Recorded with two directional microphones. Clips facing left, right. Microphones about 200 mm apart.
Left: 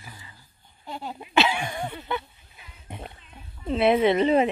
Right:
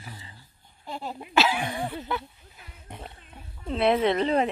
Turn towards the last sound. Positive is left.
turn(degrees=5)  # may be behind; listen again after turning